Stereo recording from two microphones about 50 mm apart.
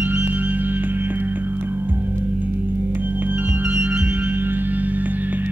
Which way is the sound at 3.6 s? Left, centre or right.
Right.